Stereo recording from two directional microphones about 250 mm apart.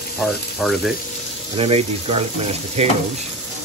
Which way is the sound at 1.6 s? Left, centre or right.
Right.